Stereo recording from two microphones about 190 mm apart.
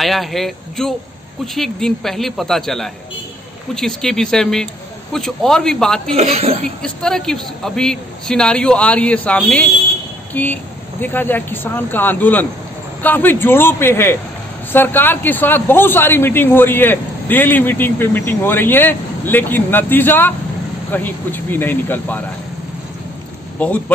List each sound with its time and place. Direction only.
0.0 s a man's voice: centre (ahead or behind)
6.1 s a woman's voice: 30° right (ahead or behind)
6.8 s a man's voice: 5° left (ahead or behind)